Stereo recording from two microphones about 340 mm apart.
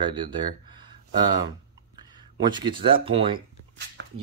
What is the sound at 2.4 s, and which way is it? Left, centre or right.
Speech, centre.